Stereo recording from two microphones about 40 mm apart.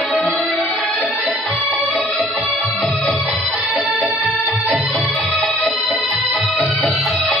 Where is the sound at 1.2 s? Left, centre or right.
Centre.